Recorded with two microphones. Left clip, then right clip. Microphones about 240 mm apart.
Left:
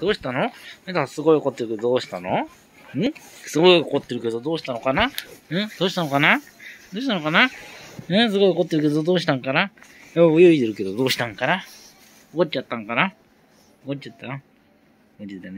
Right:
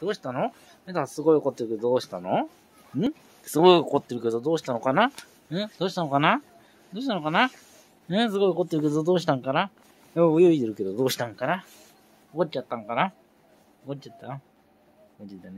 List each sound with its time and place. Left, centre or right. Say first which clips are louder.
0.0 s speech: left 5 dB; centre
5.5 s speech: left 5 dB; centre